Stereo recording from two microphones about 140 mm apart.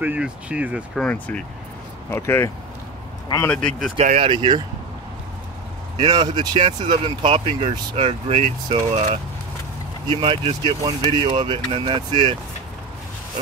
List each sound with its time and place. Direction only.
0.0 s speech: 10° right (ahead or behind)
0.9 s speech: 10° left (ahead or behind)
3.4 s speech: 5° left (ahead or behind)
4.2 s speech: 35° right (ahead or behind)
5.9 s speech: 30° right (ahead or behind); by 9.2 s 50° right (ahead or behind)
10.0 s speech: 35° right (ahead or behind)